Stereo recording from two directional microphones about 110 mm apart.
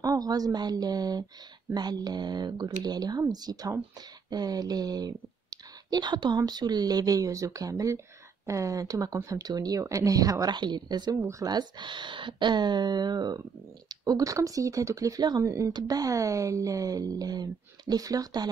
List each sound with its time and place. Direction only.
0.0 s speech: 35° right (ahead or behind)
11.1 s speech: 30° right (ahead or behind)